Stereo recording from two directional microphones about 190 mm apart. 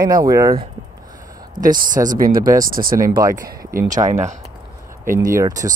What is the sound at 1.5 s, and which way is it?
Speech, 45° right (ahead or behind).